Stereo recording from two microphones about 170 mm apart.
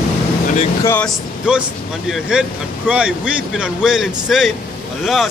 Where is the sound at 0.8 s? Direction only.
10° left (ahead or behind).